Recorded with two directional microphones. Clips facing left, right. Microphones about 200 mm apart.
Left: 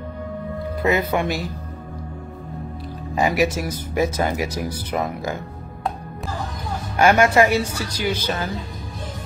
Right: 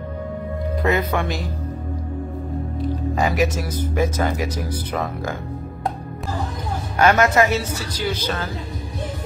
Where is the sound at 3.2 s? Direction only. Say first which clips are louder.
Left 2 dB; 10° left (ahead or behind).